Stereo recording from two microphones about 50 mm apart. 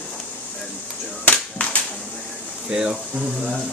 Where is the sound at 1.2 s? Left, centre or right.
Left.